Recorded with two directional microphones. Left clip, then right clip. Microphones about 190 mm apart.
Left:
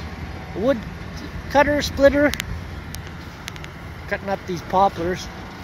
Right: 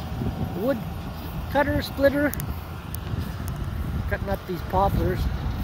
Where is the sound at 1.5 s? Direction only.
20° left (ahead or behind).